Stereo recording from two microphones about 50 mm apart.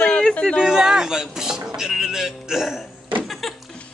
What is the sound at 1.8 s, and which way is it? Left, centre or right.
Speech, centre.